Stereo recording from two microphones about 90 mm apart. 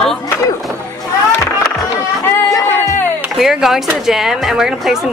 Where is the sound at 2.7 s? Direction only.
25° left (ahead or behind).